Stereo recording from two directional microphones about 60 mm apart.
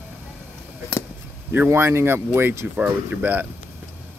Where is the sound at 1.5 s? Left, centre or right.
Right.